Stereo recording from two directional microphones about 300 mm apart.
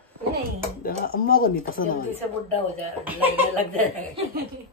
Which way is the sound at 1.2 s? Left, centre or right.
Left.